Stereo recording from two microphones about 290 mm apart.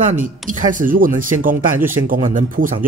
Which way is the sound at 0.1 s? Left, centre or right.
Right.